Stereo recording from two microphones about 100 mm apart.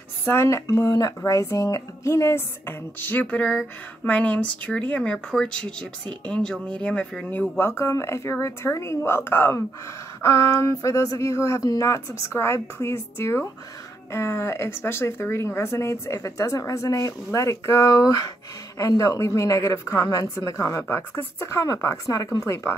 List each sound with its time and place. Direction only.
0.2 s speech: 25° left (ahead or behind)